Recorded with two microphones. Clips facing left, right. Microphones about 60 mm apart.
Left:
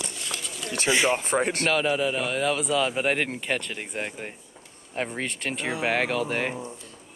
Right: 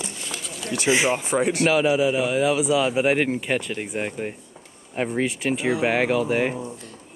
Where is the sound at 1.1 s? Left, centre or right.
Left.